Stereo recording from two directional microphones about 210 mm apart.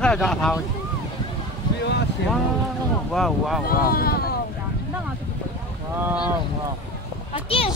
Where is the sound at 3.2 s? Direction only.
Centre (ahead or behind).